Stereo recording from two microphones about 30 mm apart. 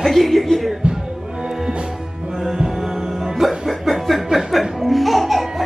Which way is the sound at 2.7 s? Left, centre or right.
Centre.